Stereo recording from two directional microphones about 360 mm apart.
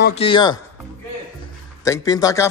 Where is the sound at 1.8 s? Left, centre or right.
Centre.